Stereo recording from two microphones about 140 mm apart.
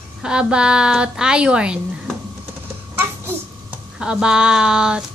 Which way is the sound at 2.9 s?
15° right (ahead or behind).